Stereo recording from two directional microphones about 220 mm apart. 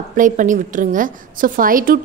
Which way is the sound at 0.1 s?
35° right (ahead or behind).